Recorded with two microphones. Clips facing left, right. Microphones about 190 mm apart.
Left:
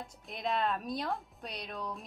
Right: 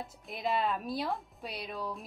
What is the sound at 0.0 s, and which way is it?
Speech, centre (ahead or behind).